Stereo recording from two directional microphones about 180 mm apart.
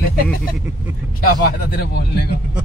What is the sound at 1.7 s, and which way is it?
Speech, 65° left (ahead or behind).